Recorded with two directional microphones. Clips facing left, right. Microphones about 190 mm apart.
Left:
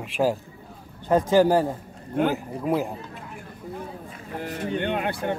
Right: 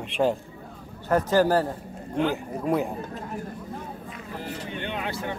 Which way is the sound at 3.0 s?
40° right (ahead or behind).